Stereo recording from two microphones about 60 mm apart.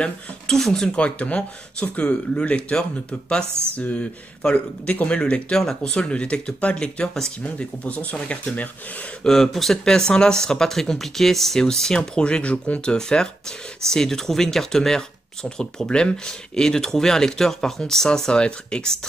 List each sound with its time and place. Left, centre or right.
0.0 s speech: centre
7.4 s speech: left
9.2 s speech: centre; by 12.9 s left
12.9 s speech: centre